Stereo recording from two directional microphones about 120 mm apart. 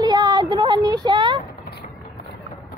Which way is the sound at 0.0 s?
35° right (ahead or behind).